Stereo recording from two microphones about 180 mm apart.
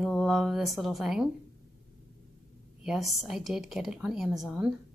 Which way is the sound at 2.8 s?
Centre (ahead or behind).